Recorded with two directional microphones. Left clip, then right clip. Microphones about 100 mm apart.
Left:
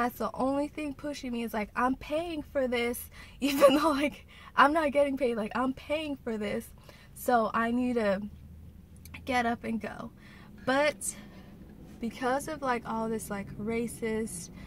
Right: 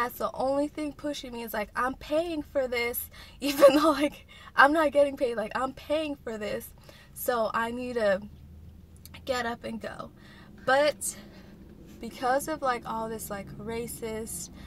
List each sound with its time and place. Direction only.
0.0 s a woman's voice: 20° left (ahead or behind)
9.2 s a woman's voice: 20° left (ahead or behind)
12.0 s a woman's voice: 15° left (ahead or behind)